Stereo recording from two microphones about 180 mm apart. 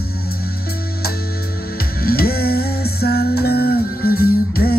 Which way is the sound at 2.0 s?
55° left (ahead or behind).